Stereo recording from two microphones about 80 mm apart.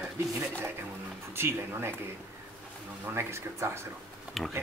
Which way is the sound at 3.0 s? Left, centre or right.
Right.